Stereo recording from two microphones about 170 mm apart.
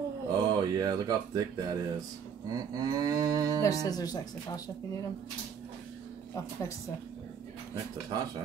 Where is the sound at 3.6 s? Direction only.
20° left (ahead or behind).